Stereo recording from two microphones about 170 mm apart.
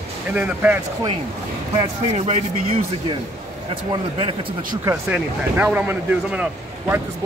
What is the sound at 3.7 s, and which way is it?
Speech, 30° right (ahead or behind).